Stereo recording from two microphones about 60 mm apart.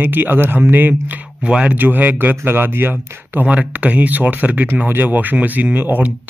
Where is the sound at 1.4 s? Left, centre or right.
Centre.